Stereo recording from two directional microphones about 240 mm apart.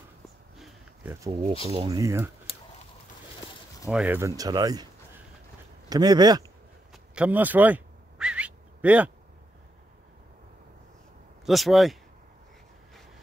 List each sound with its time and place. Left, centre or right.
0.6 s a sound: centre
1.7 s speech: centre
3.9 s speech: centre
5.9 s speech: centre
6.9 s a sound: centre
11.4 s speech: centre